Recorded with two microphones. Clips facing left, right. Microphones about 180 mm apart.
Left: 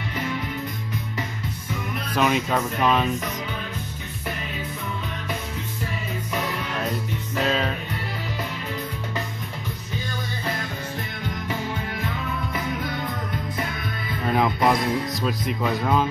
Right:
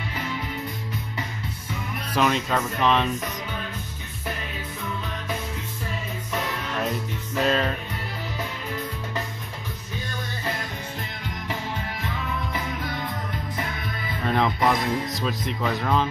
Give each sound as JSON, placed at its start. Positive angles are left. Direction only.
{"t": 2.1, "sound": "speech", "side_deg": 5}
{"t": 7.4, "sound": "speech", "side_deg": 0}
{"t": 14.2, "sound": "speech", "side_deg": 5}